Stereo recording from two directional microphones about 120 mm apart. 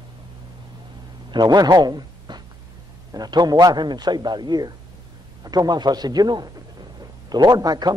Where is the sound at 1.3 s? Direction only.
35° right (ahead or behind).